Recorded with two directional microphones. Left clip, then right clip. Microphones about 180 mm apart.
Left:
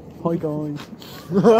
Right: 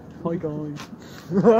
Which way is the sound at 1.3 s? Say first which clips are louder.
Left 2 dB; 20° left (ahead or behind).